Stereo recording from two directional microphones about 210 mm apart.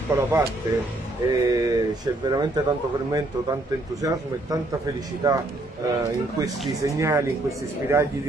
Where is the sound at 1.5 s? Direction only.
15° right (ahead or behind).